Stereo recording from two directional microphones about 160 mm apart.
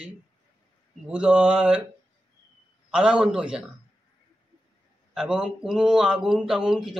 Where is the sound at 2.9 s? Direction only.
5° right (ahead or behind).